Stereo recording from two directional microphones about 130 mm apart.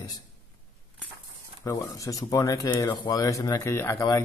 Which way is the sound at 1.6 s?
25° left (ahead or behind).